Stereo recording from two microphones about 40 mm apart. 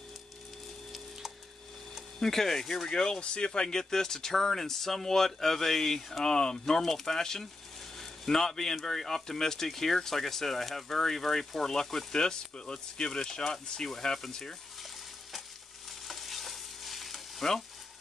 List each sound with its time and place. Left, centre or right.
2.1 s speech: centre
2.9 s speech: left
3.6 s speech: centre
6.2 s speech: centre
6.6 s speech: centre
16.1 s stir: centre